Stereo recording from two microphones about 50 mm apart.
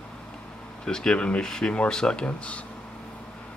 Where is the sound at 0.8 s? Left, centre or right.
Centre.